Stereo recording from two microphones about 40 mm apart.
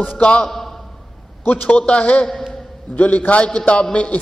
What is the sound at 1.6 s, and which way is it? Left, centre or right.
Speech, left.